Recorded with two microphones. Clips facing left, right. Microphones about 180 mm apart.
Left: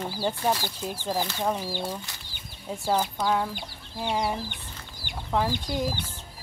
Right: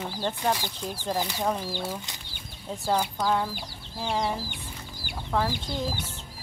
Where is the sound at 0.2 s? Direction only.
10° left (ahead or behind).